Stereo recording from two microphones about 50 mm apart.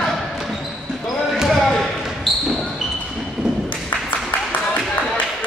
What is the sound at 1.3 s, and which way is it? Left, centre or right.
Basketball bounce, centre.